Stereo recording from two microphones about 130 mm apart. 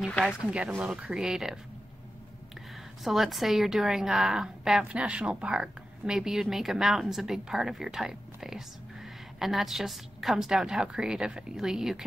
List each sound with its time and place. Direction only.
0.5 s a woman's voice: 10° right (ahead or behind)
2.7 s a woman's voice: centre (ahead or behind)